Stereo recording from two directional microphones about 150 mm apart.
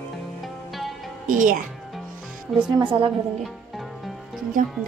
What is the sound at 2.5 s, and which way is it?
Speech, 35° right (ahead or behind).